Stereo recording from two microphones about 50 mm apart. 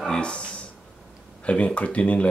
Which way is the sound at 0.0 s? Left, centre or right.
Centre.